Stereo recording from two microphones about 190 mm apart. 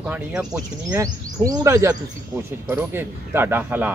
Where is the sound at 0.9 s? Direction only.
15° right (ahead or behind).